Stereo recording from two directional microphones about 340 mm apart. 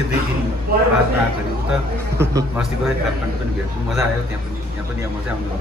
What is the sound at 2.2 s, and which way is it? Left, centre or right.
Speech, centre.